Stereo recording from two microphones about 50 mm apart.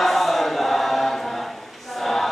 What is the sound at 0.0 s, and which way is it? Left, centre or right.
Chant, centre.